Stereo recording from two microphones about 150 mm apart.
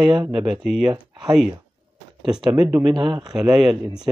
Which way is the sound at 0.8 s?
30° right (ahead or behind).